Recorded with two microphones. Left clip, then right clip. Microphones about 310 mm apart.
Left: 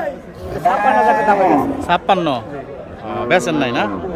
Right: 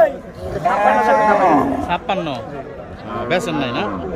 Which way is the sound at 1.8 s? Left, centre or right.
Centre.